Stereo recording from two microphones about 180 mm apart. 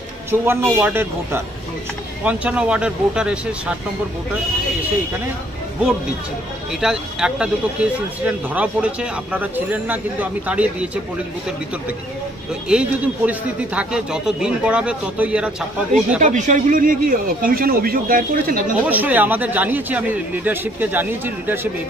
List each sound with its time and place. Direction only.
0.3 s a man's voice: 10° right (ahead or behind)
6.7 s speech: 5° right (ahead or behind)
12.6 s a man's voice: 5° right (ahead or behind)
16.2 s speech: 40° right (ahead or behind)
18.8 s speech: 10° right (ahead or behind)